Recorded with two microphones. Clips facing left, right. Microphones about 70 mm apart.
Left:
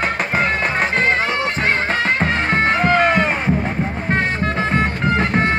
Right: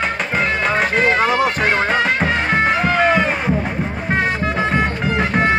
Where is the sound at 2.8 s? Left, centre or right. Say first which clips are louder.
Even; centre.